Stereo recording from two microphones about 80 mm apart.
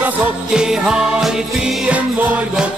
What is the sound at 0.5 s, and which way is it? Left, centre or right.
Music, centre.